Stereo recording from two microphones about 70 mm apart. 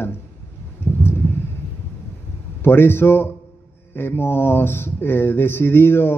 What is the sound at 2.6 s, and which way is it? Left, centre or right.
Speech, left.